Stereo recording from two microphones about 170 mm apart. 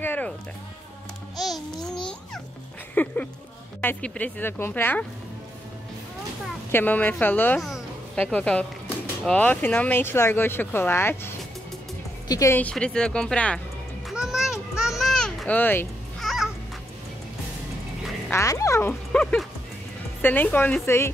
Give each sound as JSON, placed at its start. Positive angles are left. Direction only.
{"t": 0.0, "sound": "music", "side_deg": 10}
{"t": 1.3, "sound": "babbling", "side_deg": 0}
{"t": 2.9, "sound": "speech", "side_deg": 10}
{"t": 6.7, "sound": "speech", "side_deg": 10}
{"t": 7.6, "sound": "music", "side_deg": 5}
{"t": 9.0, "sound": "speech", "side_deg": 10}
{"t": 14.0, "sound": "a sound", "side_deg": -5}
{"t": 16.2, "sound": "cat", "side_deg": 0}
{"t": 18.3, "sound": "speech", "side_deg": 20}